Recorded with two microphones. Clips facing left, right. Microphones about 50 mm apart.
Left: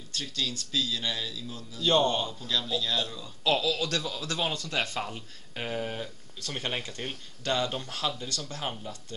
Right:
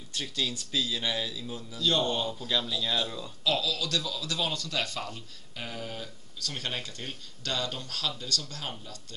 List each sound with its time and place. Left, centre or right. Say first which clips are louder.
0.1 s a man's voice: right 1 dB; centre
1.8 s a man's voice: left 3 dB; left
2.0 s a man's voice: left 1 dB; centre
3.4 s speech: left 3 dB; left